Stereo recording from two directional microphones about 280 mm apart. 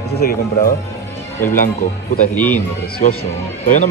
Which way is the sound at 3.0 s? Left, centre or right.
Left.